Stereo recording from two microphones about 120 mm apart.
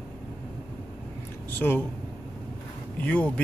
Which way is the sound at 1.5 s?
15° left (ahead or behind).